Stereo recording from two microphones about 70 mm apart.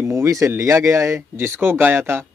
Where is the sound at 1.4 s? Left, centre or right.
Right.